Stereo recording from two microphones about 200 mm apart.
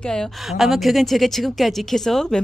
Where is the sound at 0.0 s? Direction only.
5° left (ahead or behind).